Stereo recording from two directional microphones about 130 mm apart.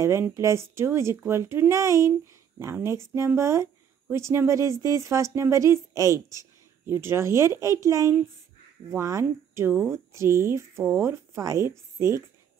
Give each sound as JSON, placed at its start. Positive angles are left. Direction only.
{"t": 0.0, "sound": "speech", "side_deg": -20}